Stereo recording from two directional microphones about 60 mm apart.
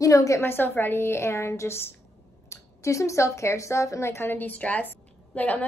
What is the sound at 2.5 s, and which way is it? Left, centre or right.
A woman's voice, left.